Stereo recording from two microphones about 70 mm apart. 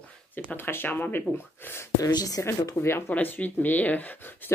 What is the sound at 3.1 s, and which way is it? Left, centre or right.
Speech, left.